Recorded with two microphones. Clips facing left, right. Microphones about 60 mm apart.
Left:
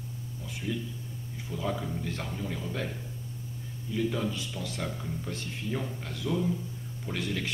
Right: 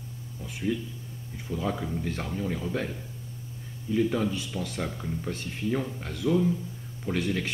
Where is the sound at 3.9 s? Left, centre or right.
Right.